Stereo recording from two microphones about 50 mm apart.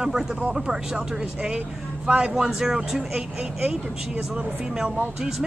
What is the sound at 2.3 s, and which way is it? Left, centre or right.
Speech, centre.